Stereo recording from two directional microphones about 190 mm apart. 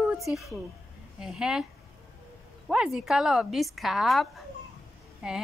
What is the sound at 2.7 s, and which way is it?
A woman's voice, 5° right (ahead or behind).